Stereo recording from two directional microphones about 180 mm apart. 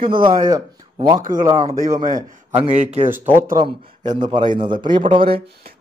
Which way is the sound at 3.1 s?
10° right (ahead or behind).